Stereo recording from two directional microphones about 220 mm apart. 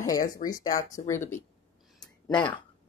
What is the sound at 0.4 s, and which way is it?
Speech, 40° left (ahead or behind).